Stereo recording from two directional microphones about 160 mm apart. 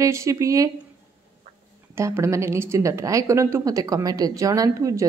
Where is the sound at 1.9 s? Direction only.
15° right (ahead or behind).